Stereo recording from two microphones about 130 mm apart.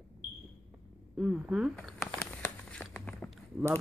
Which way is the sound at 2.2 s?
10° left (ahead or behind).